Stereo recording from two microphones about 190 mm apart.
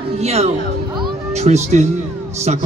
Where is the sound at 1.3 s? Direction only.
35° right (ahead or behind).